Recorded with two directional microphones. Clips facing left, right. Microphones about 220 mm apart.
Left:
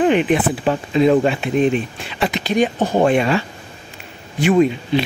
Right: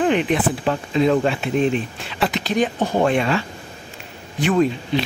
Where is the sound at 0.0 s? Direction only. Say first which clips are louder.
Left 3 dB; 10° left (ahead or behind).